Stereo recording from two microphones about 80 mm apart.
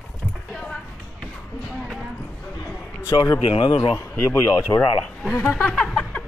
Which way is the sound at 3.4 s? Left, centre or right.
Left.